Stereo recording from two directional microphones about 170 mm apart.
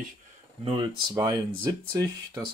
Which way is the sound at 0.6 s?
35° right (ahead or behind).